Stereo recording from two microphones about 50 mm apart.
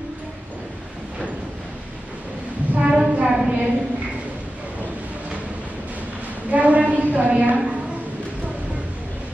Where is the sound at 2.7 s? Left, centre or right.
Centre.